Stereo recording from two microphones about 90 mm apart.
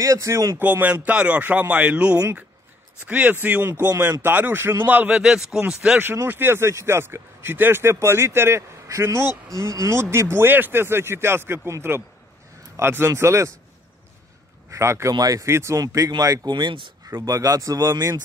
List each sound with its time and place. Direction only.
0.0 s speech: 35° right (ahead or behind)
0.6 s speech: 20° right (ahead or behind)
5.2 s speech: 5° right (ahead or behind)
6.1 s speech: 25° right (ahead or behind)
14.7 s speech: 30° right (ahead or behind); by 16.8 s 55° right (ahead or behind)
17.2 s speech: 40° right (ahead or behind)